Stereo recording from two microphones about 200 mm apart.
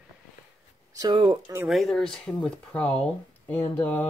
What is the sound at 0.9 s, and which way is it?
Speech, 20° right (ahead or behind).